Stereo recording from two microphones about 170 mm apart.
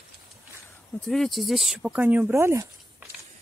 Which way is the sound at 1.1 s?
Centre (ahead or behind).